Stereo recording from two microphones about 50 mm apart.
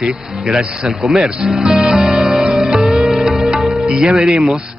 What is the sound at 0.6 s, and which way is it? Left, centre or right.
Speech, centre.